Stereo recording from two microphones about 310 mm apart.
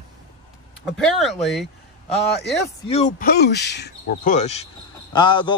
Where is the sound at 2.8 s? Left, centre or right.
Left.